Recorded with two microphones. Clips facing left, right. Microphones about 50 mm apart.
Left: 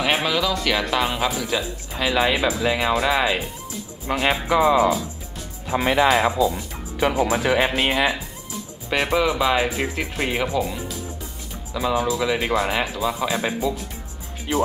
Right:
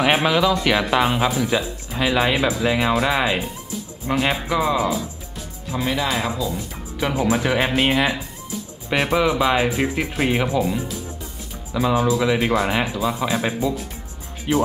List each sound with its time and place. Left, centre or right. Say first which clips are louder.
0.0 s speech: right 4 dB; centre
5.7 s speech: left 4 dB; left
6.0 s speech: left 5 dB; centre